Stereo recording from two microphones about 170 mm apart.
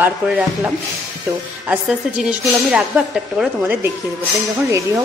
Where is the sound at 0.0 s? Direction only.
10° right (ahead or behind).